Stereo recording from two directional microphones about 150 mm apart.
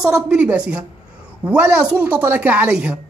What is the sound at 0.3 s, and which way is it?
A woman's voice, 10° right (ahead or behind).